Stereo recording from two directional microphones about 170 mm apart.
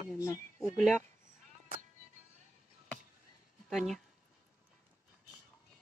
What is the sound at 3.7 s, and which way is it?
Speech, centre (ahead or behind).